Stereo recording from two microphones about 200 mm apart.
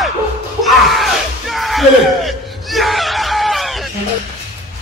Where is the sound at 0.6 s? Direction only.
Centre (ahead or behind).